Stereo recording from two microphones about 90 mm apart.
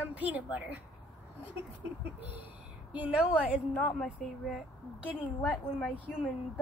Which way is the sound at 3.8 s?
15° left (ahead or behind).